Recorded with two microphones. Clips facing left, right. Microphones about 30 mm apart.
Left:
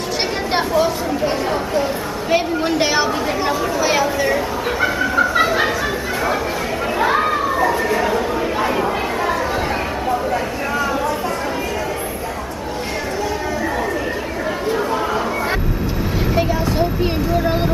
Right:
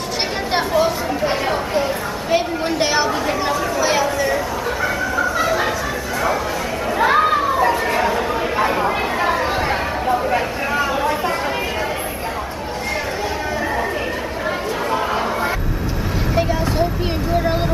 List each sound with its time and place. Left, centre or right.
0.5 s a woman's voice: centre
0.8 s speech: centre
2.3 s a woman's voice: centre
5.1 s music: left
7.0 s chatter: centre
8.0 s chatter: centre
16.3 s vehicle: centre
17.4 s a woman's voice: centre